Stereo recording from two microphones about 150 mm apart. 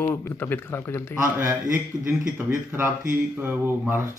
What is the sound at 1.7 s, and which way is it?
Speech, 5° right (ahead or behind).